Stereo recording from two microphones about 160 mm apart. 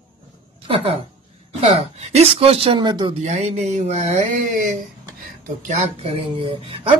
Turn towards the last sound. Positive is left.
turn(degrees=-35)  # may be behind; listen again after turning